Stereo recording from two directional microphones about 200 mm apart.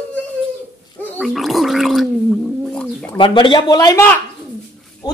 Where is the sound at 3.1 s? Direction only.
25° left (ahead or behind).